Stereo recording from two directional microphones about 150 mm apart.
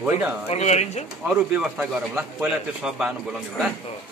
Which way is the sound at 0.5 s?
45° left (ahead or behind).